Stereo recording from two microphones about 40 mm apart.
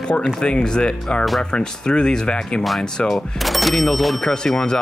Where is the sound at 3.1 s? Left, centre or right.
Centre.